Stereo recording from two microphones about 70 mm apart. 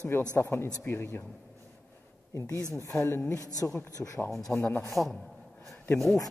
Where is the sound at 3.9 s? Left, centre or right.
Left.